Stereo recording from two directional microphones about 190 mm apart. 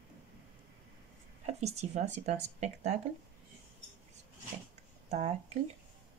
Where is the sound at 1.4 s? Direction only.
35° right (ahead or behind).